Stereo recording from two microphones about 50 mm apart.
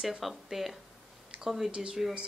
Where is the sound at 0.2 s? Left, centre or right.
Centre.